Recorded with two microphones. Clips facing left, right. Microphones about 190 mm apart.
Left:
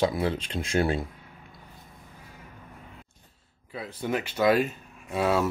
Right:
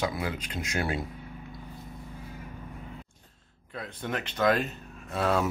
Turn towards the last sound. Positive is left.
turn(degrees=10)  # may be behind; listen again after turning